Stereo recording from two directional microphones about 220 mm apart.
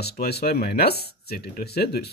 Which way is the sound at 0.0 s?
45° left (ahead or behind).